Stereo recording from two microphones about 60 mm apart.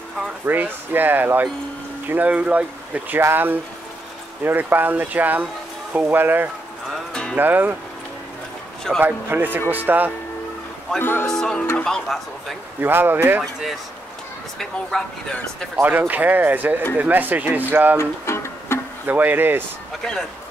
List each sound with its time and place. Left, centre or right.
0.5 s speech: right
3.2 s speech: right
9.0 s speech: right
11.0 s speech: left
11.2 s speech: centre
12.8 s speech: right
13.4 s speech: centre
14.6 s speech: centre
16.1 s speech: right
17.9 s music: left
19.0 s speech: right